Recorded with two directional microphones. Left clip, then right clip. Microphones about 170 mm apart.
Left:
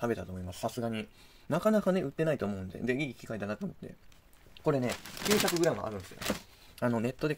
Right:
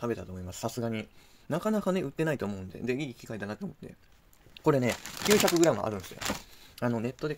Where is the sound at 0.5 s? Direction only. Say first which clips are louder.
Right 1 dB; 30° right (ahead or behind).